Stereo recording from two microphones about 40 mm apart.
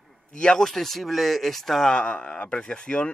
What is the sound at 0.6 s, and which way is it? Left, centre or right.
Speech, centre.